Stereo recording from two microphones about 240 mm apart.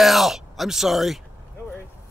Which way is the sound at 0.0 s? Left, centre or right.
Centre.